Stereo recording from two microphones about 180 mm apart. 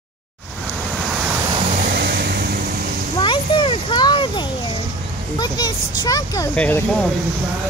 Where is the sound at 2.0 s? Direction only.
70° right (ahead or behind).